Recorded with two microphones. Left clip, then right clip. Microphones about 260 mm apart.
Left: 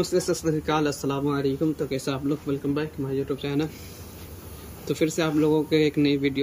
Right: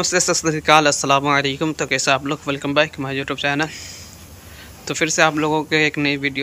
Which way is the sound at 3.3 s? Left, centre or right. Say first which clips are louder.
Right 8 dB; centre.